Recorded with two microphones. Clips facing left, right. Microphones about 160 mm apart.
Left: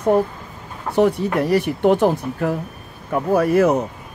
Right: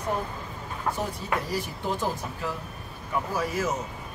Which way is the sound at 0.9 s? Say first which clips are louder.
Left 13 dB; 70° left (ahead or behind).